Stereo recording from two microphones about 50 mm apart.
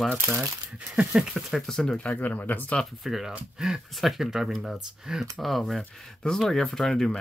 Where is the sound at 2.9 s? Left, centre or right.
Centre.